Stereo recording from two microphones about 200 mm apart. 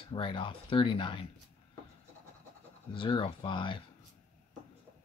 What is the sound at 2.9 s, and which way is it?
Speech, 25° left (ahead or behind).